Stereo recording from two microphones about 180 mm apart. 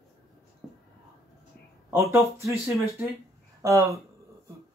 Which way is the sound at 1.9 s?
15° right (ahead or behind).